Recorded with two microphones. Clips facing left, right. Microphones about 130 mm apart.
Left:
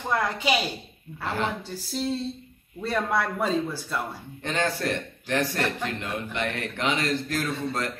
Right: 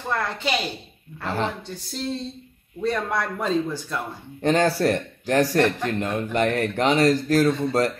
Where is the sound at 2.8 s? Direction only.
5° left (ahead or behind).